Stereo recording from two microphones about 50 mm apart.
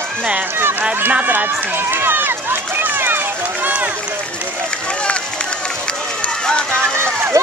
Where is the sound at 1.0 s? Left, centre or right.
Right.